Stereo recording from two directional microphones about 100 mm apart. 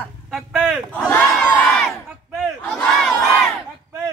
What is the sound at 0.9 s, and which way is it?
Speech, 10° left (ahead or behind).